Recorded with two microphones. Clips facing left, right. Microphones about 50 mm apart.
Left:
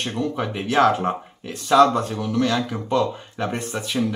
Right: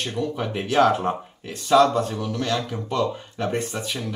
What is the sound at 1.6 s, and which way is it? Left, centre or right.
Speech, left.